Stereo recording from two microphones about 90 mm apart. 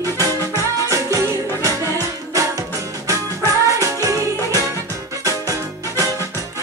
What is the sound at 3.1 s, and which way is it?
Music, 35° right (ahead or behind).